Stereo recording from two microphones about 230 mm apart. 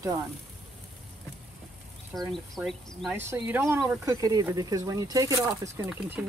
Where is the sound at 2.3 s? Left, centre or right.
Centre.